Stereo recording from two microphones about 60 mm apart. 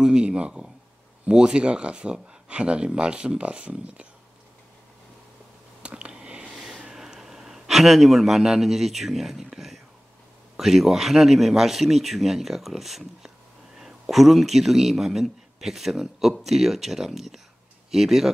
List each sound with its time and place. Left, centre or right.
0.0 s speech: centre
5.8 s a sound: centre
6.8 s a man's voice: centre